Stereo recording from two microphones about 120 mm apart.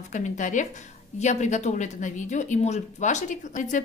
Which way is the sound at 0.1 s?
90° left.